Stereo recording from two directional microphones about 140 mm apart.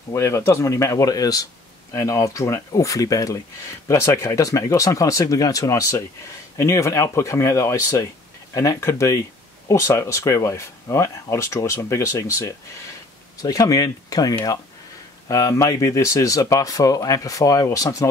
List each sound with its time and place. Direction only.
0.1 s speech: 20° left (ahead or behind)
13.4 s speech: 25° left (ahead or behind)